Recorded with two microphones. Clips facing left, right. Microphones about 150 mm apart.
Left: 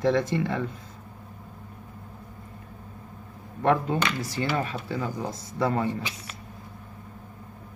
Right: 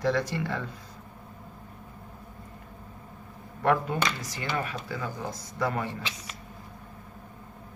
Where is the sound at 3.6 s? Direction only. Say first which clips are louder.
Left 2 dB; 20° left (ahead or behind).